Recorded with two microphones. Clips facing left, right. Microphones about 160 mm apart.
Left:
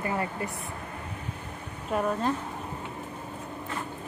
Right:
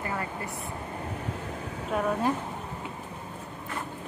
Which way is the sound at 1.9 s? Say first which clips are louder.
Left 1 dB; centre (ahead or behind).